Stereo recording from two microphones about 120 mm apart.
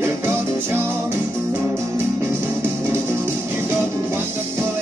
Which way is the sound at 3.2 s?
20° right (ahead or behind).